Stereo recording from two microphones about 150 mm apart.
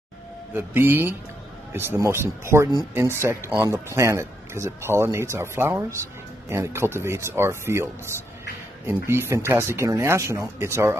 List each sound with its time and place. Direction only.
0.6 s speech: 15° right (ahead or behind)